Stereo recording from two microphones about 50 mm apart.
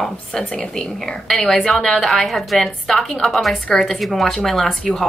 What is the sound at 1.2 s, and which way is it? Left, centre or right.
A woman's voice, centre.